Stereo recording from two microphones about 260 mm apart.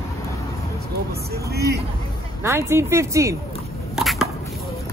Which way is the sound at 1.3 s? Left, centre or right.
Right.